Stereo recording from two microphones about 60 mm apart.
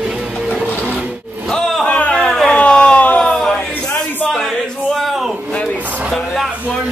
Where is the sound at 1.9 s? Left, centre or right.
Centre.